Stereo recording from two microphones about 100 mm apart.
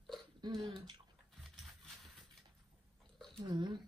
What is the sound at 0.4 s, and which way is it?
Throat clearing, 50° right (ahead or behind).